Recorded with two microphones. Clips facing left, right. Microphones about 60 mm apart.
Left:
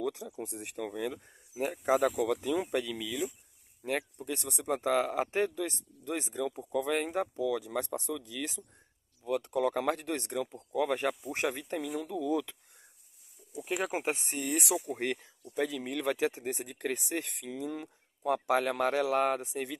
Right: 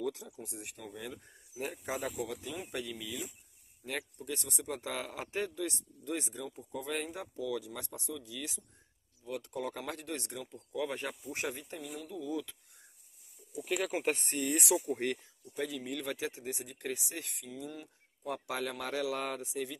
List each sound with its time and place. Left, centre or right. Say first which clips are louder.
0.1 s speech: left 6 dB; left
0.8 s speech: left 9 dB; left
1.1 s speech: left 4 dB; left
2.9 s speech: left 7 dB; left
3.8 s speech: left 6 dB; left
6.8 s speech: left 8 dB; left
9.8 s speech: left 8 dB; left
11.8 s speech: left 7 dB; left
13.7 s speech: left 1 dB; left
14.0 s speech: even; centre
15.4 s speech: left 5 dB; left
16.7 s speech: left 6 dB; left
18.8 s speech: left 7 dB; left